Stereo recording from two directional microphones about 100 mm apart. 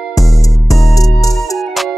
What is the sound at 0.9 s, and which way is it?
Music, 35° left (ahead or behind).